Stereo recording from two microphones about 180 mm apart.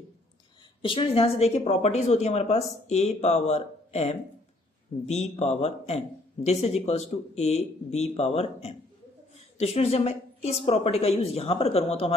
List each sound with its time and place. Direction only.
0.8 s speech: 30° left (ahead or behind)